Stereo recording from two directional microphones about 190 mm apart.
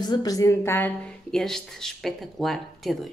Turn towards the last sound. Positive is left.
turn(degrees=0)  # may be behind; listen again after turning